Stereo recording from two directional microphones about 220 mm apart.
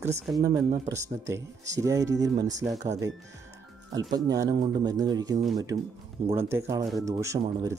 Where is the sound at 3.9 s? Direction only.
15° right (ahead or behind).